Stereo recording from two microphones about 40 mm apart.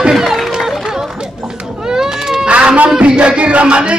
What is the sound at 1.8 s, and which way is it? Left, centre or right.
Baby cry, centre.